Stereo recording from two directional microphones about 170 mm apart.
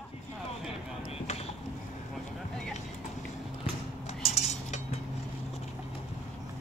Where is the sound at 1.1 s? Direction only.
35° left (ahead or behind).